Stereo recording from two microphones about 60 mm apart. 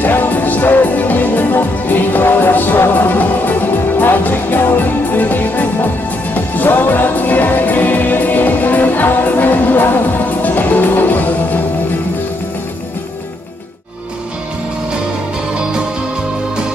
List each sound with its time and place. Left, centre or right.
0.0 s music: left